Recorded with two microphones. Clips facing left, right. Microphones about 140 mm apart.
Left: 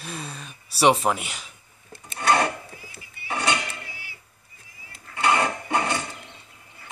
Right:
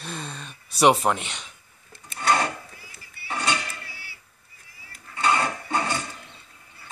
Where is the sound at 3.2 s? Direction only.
15° left (ahead or behind).